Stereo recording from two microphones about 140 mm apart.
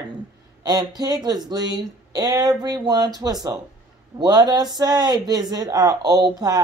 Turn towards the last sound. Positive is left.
turn(degrees=-25)  # may be behind; listen again after turning